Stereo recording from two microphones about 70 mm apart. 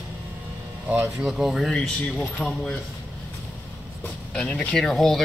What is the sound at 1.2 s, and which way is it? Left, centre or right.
Speech, centre.